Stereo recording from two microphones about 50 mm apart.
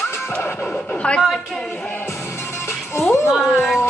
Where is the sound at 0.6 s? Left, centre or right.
Left.